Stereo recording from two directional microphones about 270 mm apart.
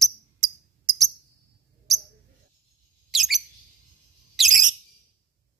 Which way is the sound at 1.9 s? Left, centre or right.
Centre.